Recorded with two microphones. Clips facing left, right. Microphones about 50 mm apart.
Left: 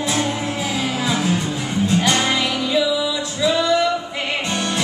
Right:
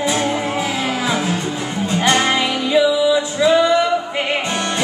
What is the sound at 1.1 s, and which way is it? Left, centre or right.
Music, centre.